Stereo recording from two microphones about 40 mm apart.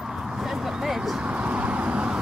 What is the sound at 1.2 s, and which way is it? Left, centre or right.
Vehicle, right.